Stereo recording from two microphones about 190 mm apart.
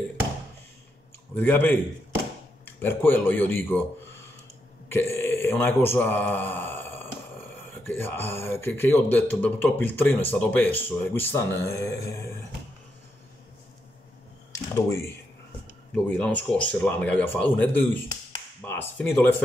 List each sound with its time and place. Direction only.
1.3 s speech: 10° left (ahead or behind)
4.8 s burping: 10° left (ahead or behind)
7.8 s speech: 10° left (ahead or behind)
14.5 s a sound: 15° left (ahead or behind)
15.9 s speech: 5° left (ahead or behind)